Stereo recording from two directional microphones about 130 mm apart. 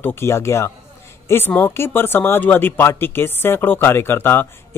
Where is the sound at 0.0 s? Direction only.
15° left (ahead or behind).